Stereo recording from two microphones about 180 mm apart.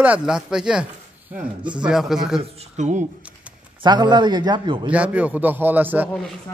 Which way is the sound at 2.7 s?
40° right (ahead or behind).